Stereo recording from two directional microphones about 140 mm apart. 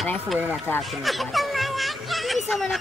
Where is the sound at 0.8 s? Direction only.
Centre (ahead or behind).